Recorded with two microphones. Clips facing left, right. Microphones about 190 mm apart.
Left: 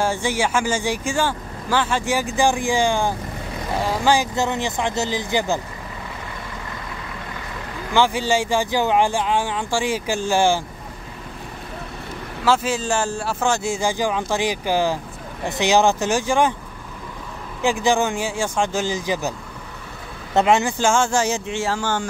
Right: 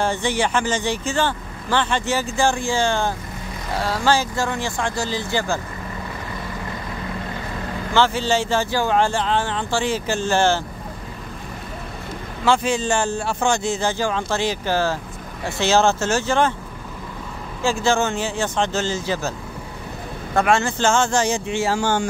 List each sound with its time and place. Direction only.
0.0 s speech: 10° left (ahead or behind)
7.9 s speech: 15° left (ahead or behind)
12.4 s speech: 5° left (ahead or behind)
17.6 s speech: 15° left (ahead or behind)
20.3 s speech: 20° left (ahead or behind); by 21.7 s centre (ahead or behind)
21.7 s speech: 15° right (ahead or behind)